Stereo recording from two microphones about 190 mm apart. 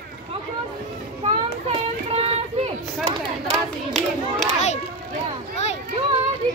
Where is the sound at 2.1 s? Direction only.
30° right (ahead or behind).